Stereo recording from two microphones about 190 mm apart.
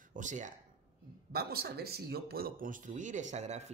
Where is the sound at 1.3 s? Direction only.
55° right (ahead or behind).